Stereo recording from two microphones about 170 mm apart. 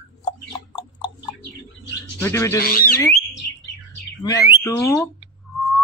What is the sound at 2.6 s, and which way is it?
Speech, 60° left (ahead or behind).